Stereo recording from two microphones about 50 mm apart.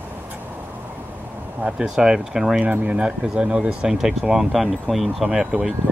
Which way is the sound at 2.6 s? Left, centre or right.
Right.